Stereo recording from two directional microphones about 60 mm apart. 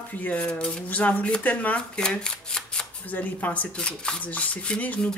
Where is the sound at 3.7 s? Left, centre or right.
Centre.